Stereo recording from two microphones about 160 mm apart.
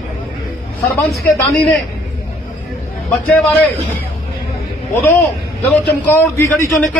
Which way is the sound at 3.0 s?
10° left (ahead or behind).